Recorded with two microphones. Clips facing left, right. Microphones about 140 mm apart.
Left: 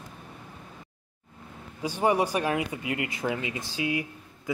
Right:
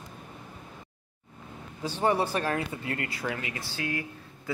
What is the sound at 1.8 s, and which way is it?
A man's voice, 10° left (ahead or behind).